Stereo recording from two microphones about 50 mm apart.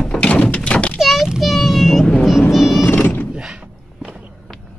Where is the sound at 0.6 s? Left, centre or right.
Left.